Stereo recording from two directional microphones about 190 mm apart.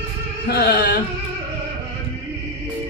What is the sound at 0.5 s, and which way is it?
Speech, 55° left (ahead or behind).